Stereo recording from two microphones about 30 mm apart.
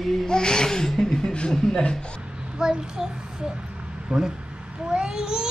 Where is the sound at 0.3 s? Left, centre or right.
Left.